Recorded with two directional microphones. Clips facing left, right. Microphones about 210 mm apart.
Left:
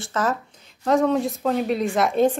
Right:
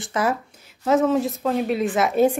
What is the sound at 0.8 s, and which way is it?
A woman's voice, 5° right (ahead or behind).